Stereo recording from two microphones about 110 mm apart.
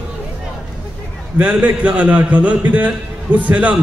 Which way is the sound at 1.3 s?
15° right (ahead or behind).